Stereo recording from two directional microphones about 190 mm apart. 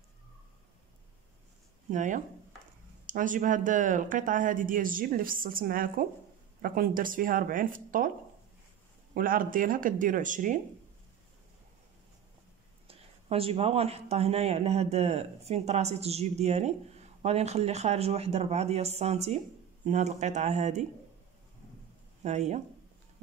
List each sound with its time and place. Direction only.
1.9 s speech: 40° right (ahead or behind)
9.1 s speech: 45° right (ahead or behind)
12.8 s speech: 30° right (ahead or behind)
22.2 s speech: 35° right (ahead or behind)